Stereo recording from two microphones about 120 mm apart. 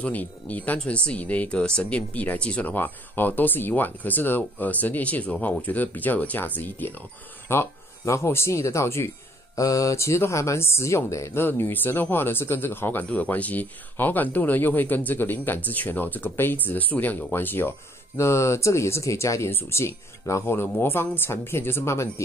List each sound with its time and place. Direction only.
0.0 s speech: 15° left (ahead or behind)